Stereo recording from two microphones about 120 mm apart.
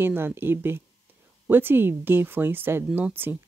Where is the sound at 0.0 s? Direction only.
20° right (ahead or behind).